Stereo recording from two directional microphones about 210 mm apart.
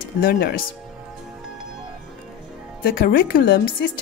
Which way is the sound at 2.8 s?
45° left (ahead or behind).